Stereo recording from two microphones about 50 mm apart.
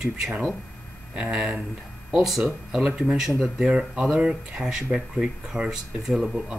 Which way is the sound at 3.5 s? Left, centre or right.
Right.